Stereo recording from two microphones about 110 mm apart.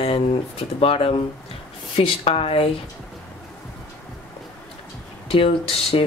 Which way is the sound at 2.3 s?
65° left (ahead or behind).